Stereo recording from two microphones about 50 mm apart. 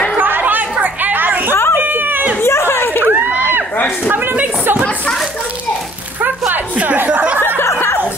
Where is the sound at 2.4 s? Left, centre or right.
Left.